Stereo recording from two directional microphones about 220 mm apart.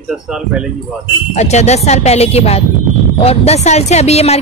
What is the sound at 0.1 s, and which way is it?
Speech, 5° right (ahead or behind).